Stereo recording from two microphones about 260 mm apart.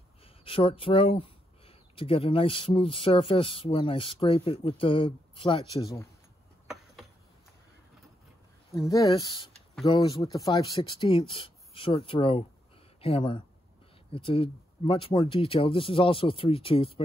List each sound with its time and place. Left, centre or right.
0.2 s speech: left
8.7 s speech: centre